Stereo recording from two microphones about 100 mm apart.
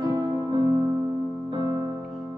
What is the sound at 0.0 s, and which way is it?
Music, 40° right (ahead or behind).